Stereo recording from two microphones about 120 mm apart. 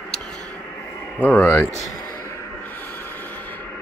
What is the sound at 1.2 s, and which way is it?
Speech, 15° left (ahead or behind).